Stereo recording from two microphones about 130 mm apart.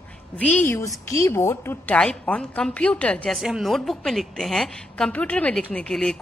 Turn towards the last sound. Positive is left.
turn(degrees=5)  # may be behind; listen again after turning